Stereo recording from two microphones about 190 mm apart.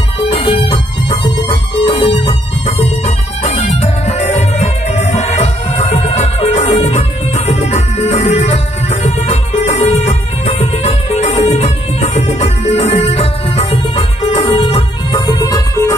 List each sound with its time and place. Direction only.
0.3 s music: 30° left (ahead or behind)